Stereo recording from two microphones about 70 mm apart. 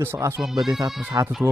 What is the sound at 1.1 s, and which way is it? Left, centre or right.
Speech, right.